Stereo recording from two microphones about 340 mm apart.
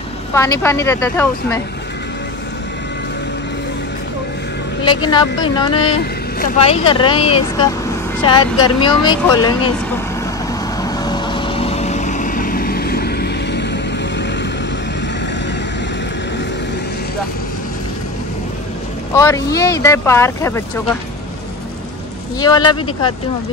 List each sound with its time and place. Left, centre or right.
0.3 s speech: centre
4.8 s speech: centre
10.8 s vehicle: centre; by 14.5 s left
19.1 s speech: centre
22.4 s speech: centre